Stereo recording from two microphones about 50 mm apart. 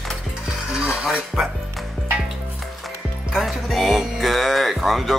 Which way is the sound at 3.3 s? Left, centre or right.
Centre.